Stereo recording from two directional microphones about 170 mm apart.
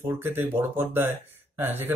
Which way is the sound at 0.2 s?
10° right (ahead or behind).